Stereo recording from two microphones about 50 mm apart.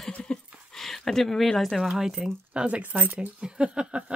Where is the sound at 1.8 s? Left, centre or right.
Centre.